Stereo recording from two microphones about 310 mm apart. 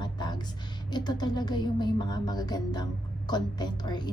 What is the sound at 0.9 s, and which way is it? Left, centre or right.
Music, centre.